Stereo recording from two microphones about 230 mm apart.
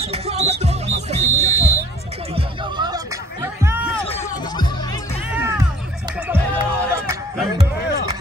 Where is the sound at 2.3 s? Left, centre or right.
Centre.